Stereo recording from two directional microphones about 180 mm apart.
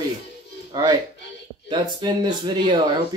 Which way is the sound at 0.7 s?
25° right (ahead or behind).